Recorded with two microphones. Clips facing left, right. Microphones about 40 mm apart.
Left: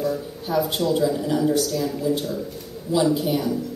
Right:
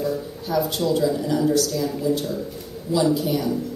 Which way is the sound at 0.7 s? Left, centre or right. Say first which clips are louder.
Even; centre.